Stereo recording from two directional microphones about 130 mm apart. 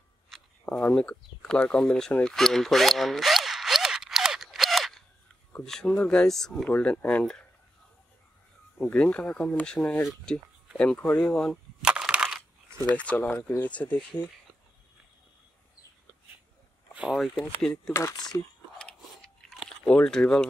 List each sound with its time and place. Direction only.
0.3 s a sound: 5° left (ahead or behind)
5.6 s speech: 5° left (ahead or behind)
8.7 s speech: 5° left (ahead or behind)
11.8 s a sound: 5° right (ahead or behind)
12.9 s speech: 10° left (ahead or behind)
16.9 s speech: 10° right (ahead or behind)
17.6 s speech: 5° left (ahead or behind)
17.9 s speech: 25° left (ahead or behind)
18.8 s crunch: 5° left (ahead or behind)